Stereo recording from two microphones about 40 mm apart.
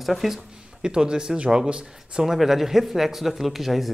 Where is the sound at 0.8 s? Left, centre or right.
Centre.